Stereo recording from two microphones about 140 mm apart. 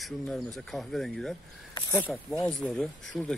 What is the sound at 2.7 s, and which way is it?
Speech, 5° left (ahead or behind).